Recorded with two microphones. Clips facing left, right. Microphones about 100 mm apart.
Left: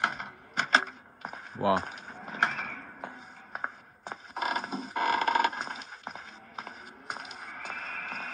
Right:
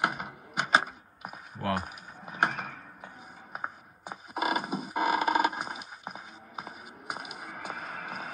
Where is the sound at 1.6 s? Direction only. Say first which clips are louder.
Left 5 dB; 15° left (ahead or behind).